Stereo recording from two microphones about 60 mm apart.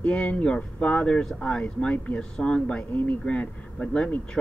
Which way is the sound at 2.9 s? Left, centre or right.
Left.